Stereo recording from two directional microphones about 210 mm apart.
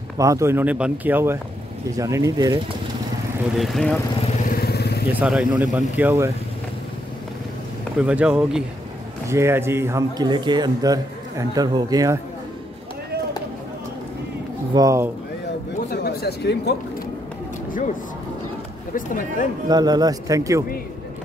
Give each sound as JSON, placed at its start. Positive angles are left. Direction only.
{"t": 0.2, "sound": "speech", "side_deg": -15}
{"t": 3.5, "sound": "speech", "side_deg": 0}
{"t": 4.5, "sound": "vehicle", "side_deg": 50}
{"t": 5.1, "sound": "speech", "side_deg": -5}
{"t": 8.0, "sound": "speech", "side_deg": -5}
{"t": 14.7, "sound": "speech", "side_deg": -15}
{"t": 15.9, "sound": "a sound", "side_deg": 50}
{"t": 18.9, "sound": "speech", "side_deg": 40}
{"t": 19.7, "sound": "speech", "side_deg": -20}